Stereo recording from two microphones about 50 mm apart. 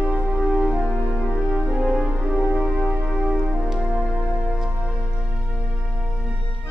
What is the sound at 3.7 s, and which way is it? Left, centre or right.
Music, centre.